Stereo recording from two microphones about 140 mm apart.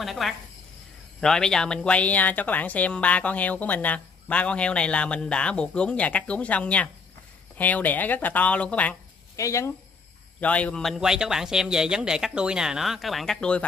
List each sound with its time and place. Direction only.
0.0 s a man's voice: centre (ahead or behind)
9.4 s speech: 20° left (ahead or behind)
10.4 s a man's voice: 10° left (ahead or behind)